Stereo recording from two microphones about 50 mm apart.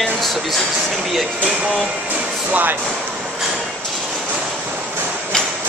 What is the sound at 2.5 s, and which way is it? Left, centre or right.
Speech, right.